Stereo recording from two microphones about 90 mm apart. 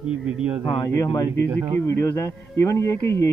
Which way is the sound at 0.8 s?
40° left (ahead or behind).